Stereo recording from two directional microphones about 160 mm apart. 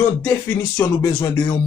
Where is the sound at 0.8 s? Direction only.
15° left (ahead or behind).